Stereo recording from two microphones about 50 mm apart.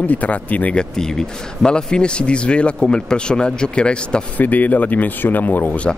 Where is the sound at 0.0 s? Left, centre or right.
Left.